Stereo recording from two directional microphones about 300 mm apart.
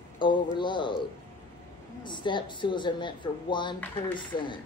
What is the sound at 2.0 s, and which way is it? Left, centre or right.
Speech, centre.